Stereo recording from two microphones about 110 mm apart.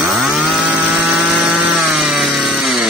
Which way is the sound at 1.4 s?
5° right (ahead or behind).